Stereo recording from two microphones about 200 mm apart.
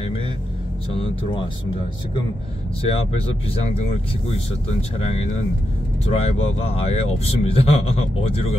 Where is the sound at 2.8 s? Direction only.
30° left (ahead or behind).